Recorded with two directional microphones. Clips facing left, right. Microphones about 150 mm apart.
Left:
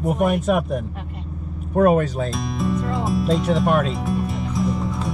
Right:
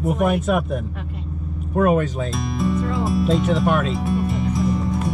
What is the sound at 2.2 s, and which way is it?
Music, centre (ahead or behind).